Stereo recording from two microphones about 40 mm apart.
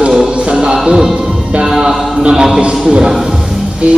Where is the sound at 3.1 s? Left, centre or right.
Centre.